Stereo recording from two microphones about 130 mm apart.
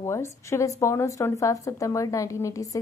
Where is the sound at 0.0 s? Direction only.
20° left (ahead or behind).